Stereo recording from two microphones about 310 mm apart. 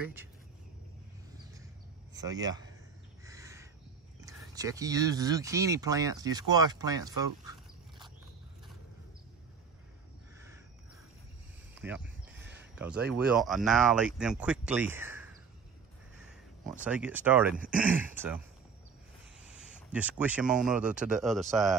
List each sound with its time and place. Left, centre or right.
0.0 s speech: centre
2.1 s speech: centre
3.3 s crow: centre
4.2 s speech: centre
11.7 s a sound: centre
13.3 s speech: centre
16.8 s speech: centre
19.4 s speech: centre